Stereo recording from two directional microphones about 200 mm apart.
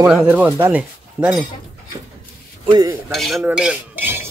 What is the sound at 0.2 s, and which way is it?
Speech, 5° right (ahead or behind).